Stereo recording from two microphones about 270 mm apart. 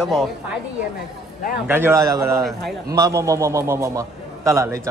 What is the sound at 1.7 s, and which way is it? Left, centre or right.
A man's voice, centre.